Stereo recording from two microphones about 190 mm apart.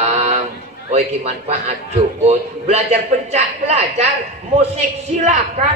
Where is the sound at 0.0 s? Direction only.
35° right (ahead or behind).